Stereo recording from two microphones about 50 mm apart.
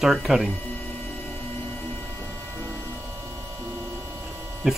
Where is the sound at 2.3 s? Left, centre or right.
Right.